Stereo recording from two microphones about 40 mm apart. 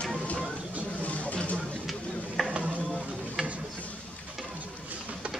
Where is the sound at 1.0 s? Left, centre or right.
Left.